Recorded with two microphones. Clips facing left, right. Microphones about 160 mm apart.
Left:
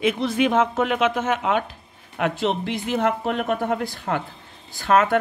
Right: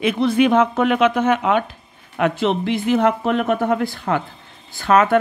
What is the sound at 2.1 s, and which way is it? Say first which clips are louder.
Speech: right 4 dB; 85° right.